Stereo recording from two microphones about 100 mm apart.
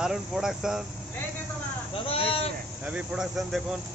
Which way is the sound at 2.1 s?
70° left (ahead or behind).